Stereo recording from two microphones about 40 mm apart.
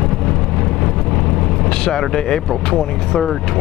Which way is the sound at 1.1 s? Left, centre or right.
Centre.